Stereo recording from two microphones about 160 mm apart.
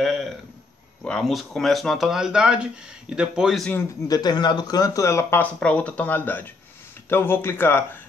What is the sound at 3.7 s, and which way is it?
Speech, 25° left (ahead or behind).